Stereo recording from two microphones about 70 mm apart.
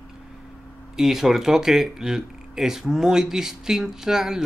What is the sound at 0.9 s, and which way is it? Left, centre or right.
Speech, centre.